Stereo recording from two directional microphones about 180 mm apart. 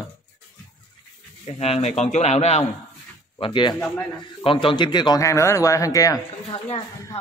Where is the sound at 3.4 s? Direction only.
25° left (ahead or behind).